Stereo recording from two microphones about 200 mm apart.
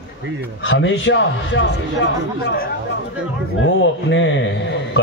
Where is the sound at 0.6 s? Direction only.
70° left (ahead or behind).